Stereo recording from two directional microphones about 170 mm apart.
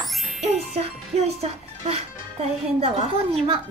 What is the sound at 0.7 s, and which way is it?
Speech, 40° right (ahead or behind).